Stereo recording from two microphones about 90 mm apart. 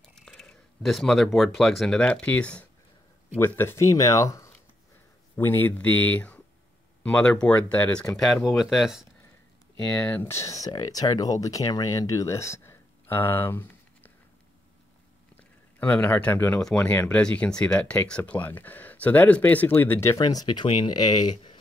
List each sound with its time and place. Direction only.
0.0 s speech: 5° left (ahead or behind)
2.0 s speech: 15° left (ahead or behind)
3.3 s speech: 25° left (ahead or behind)
5.3 s speech: 25° left (ahead or behind); by 9.0 s centre (ahead or behind)
9.9 s speech: 20° left (ahead or behind)
15.3 s a sound: 20° left (ahead or behind)
16.1 s speech: 20° left (ahead or behind)
20.2 s speech: 45° left (ahead or behind); by 20.9 s 60° left (ahead or behind)
20.9 s speech: 50° left (ahead or behind)